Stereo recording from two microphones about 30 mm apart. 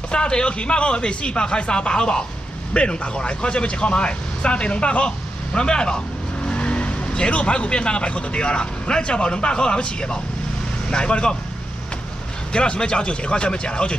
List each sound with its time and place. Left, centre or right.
0.1 s speech: left
6.4 s vehicle: left
7.2 s speech: left
12.5 s speech: left